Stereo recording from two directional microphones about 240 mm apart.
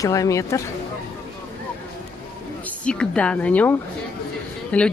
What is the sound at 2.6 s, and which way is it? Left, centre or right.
A woman's voice, centre.